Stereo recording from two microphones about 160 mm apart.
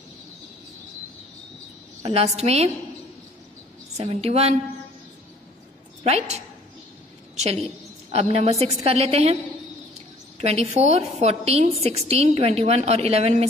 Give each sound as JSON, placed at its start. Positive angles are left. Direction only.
{"t": 2.0, "sound": "a woman's voice", "side_deg": -40}
{"t": 3.9, "sound": "a woman's voice", "side_deg": -40}
{"t": 6.0, "sound": "a woman's voice", "side_deg": -40}
{"t": 8.1, "sound": "a woman's voice", "side_deg": -40}